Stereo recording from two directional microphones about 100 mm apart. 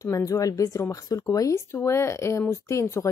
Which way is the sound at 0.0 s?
30° left (ahead or behind).